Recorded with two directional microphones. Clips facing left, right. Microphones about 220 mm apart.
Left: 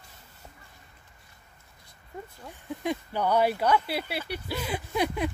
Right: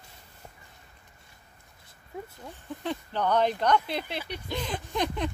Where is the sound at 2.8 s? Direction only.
10° left (ahead or behind).